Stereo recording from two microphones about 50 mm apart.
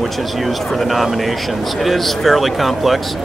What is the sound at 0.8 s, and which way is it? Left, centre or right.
Speech, centre.